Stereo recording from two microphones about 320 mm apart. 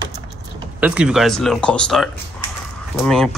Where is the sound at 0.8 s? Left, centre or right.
Centre.